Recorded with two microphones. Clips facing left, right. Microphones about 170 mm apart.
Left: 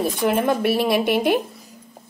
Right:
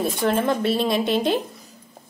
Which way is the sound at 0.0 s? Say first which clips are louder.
Left 1 dB; 10° left (ahead or behind).